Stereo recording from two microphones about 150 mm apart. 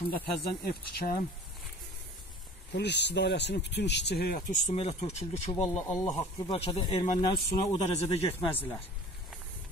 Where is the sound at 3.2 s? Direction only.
90° left.